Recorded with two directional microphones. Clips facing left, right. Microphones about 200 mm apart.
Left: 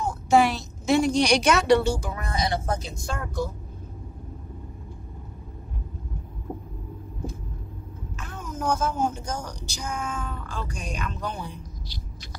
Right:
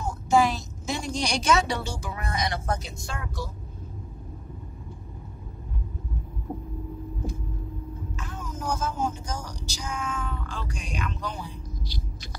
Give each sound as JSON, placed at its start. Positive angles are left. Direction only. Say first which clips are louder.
{"t": 0.3, "sound": "a woman's voice", "louder": "left 2 dB", "side_deg": 65}
{"t": 2.1, "sound": "speech", "louder": "left 2 dB", "side_deg": 30}
{"t": 3.1, "sound": "a woman's voice", "louder": "left 6 dB", "side_deg": 45}
{"t": 8.2, "sound": "speech", "louder": "left 5 dB", "side_deg": 60}